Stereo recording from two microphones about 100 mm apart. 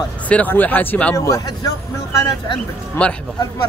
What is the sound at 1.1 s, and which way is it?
Speech, 35° left (ahead or behind).